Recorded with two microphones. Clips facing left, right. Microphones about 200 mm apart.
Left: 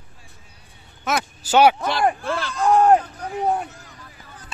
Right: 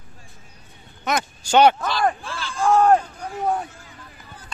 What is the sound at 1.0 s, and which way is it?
Speech, 5° left (ahead or behind).